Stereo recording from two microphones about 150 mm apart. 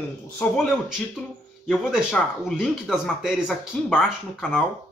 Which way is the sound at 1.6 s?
5° left (ahead or behind).